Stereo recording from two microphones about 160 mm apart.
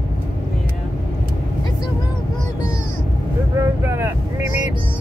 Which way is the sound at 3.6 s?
15° right (ahead or behind).